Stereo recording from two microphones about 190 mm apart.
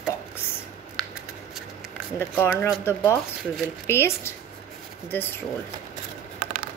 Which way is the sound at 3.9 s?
15° left (ahead or behind).